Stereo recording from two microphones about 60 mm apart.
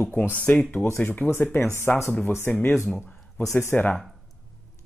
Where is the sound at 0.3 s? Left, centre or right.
Left.